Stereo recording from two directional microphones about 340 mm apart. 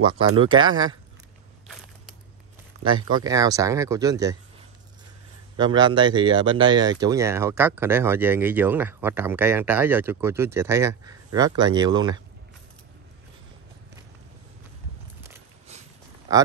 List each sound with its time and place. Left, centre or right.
0.2 s speech: centre
3.0 s speech: centre
5.6 s speech: centre